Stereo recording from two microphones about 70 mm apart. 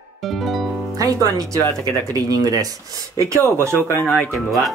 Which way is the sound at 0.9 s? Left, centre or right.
Right.